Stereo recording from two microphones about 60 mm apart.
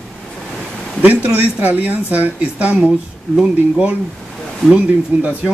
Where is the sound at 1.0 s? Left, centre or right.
Right.